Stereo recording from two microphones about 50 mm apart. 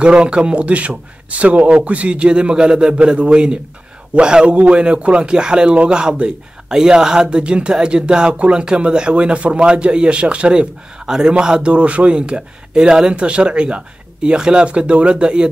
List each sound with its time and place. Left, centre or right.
0.0 s a man's voice: right